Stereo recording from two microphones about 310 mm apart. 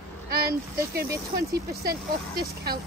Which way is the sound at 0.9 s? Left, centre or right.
Right.